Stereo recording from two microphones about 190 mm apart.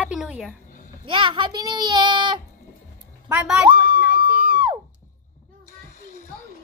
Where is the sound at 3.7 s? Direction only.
25° right (ahead or behind).